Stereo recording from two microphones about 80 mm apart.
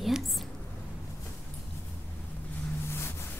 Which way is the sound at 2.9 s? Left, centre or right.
Left.